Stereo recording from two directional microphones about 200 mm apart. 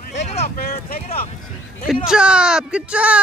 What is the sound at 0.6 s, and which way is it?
Speech, 50° left (ahead or behind).